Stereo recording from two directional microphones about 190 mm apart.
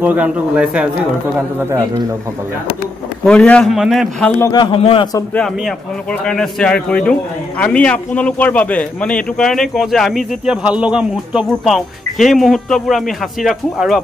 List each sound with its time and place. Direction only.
0.0 s a man's voice: 5° right (ahead or behind)
3.3 s a man's voice: 5° left (ahead or behind)
4.4 s a man's voice: 20° left (ahead or behind)
6.2 s a man's voice: 5° left (ahead or behind)